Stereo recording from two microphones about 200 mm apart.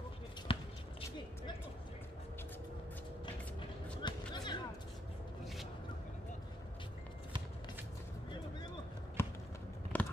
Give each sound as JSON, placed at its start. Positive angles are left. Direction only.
{"t": 0.5, "sound": "basketball bounce", "side_deg": 25}
{"t": 4.0, "sound": "music", "side_deg": 20}
{"t": 9.2, "sound": "a sound", "side_deg": 10}